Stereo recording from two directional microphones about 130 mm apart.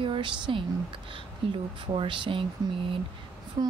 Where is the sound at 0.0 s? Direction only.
40° right (ahead or behind).